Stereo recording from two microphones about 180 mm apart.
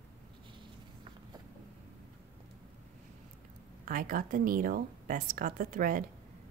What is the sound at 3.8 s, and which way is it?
A woman's voice, 50° right (ahead or behind).